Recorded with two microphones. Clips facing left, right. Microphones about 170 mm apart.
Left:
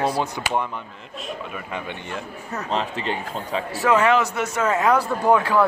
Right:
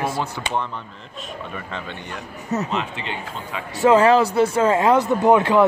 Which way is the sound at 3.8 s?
30° right (ahead or behind).